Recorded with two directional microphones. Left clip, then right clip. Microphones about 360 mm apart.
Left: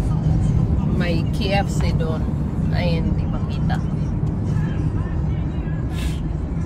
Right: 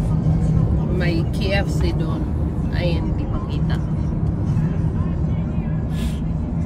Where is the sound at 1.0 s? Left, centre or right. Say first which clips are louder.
Even; centre.